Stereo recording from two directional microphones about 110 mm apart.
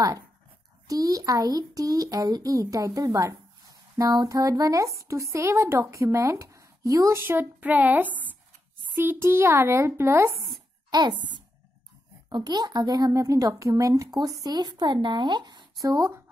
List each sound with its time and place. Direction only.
0.8 s speech: 35° right (ahead or behind)
10.9 s a woman's voice: 40° right (ahead or behind)
15.8 s speech: 30° right (ahead or behind)